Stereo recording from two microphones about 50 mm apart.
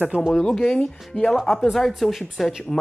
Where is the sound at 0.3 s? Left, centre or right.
Centre.